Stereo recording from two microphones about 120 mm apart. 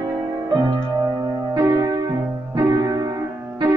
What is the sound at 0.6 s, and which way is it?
Music, 25° right (ahead or behind).